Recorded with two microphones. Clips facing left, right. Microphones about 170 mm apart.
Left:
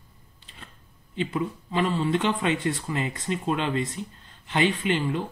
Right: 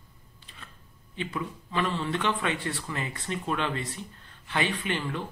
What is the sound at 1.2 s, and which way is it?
Speech, 25° left (ahead or behind).